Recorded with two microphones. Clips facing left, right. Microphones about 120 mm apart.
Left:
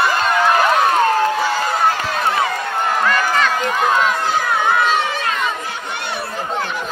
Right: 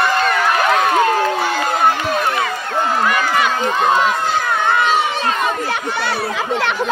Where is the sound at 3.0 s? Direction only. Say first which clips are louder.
Left 1 dB; 15° right (ahead or behind).